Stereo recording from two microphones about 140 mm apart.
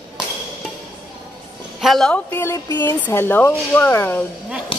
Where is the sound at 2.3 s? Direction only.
20° left (ahead or behind).